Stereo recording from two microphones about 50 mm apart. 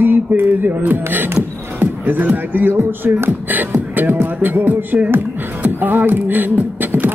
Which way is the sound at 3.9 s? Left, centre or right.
Right.